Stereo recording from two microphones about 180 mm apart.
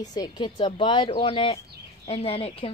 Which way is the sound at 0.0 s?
20° left (ahead or behind).